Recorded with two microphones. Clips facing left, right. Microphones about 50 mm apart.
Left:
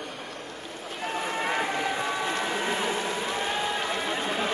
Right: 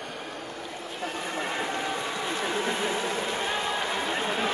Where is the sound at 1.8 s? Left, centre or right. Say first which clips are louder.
Left 2 dB; centre.